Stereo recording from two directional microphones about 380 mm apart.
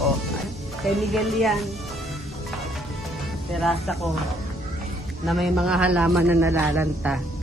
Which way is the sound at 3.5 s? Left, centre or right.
Centre.